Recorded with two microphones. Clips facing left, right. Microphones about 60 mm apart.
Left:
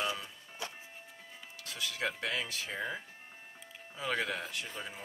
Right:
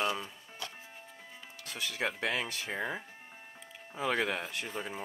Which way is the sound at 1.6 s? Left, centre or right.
Right.